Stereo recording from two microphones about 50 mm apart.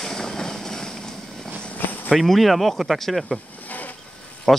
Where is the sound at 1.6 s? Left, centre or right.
Left.